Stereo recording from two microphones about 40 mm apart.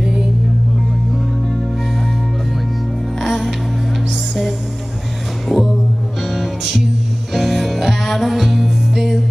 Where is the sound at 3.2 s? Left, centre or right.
Centre.